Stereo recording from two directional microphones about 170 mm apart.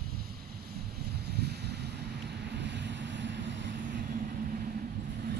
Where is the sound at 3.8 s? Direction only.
55° right (ahead or behind).